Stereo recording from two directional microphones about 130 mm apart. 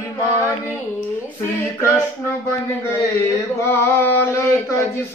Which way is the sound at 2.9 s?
20° left (ahead or behind).